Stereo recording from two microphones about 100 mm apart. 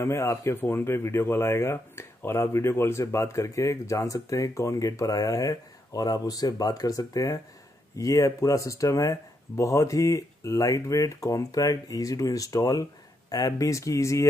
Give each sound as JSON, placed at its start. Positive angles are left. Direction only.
{"t": 0.0, "sound": "speech", "side_deg": 30}